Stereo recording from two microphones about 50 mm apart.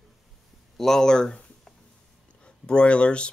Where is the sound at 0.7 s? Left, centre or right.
Centre.